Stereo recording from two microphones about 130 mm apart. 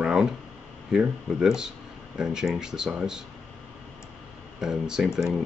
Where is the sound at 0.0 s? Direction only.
5° right (ahead or behind).